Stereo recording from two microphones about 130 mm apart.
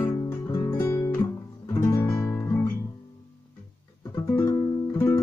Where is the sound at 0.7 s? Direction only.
25° left (ahead or behind).